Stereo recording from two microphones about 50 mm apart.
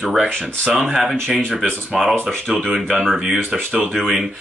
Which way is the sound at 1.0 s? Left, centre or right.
Centre.